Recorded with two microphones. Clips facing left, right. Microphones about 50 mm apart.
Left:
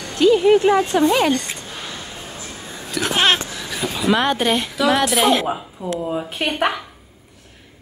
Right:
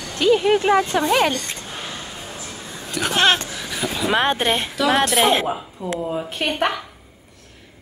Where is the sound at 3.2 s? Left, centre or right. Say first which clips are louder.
Right 1 dB; centre.